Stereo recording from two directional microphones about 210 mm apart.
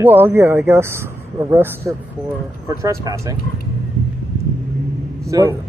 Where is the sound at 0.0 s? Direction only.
10° right (ahead or behind).